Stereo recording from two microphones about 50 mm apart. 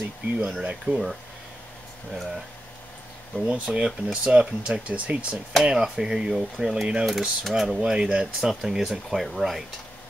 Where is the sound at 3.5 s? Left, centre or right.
Centre.